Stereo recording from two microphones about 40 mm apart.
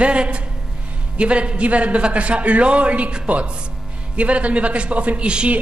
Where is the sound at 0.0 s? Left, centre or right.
Right.